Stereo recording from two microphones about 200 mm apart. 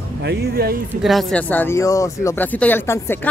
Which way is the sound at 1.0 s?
5° left (ahead or behind).